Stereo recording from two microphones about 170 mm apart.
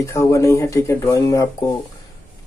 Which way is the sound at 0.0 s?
20° left (ahead or behind).